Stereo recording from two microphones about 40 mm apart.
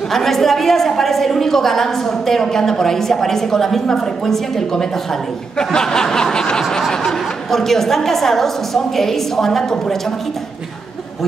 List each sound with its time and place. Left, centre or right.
0.1 s a woman's voice: centre